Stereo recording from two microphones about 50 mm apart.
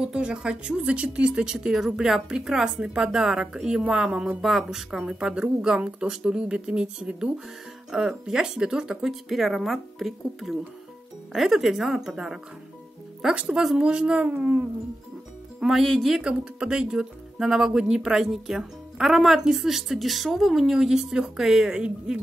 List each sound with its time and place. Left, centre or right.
0.0 s speech: centre
4.4 s speech: centre
13.3 s speech: right
13.6 s speech: centre
13.8 s speech: centre
15.8 s speech: centre
16.2 s speech: right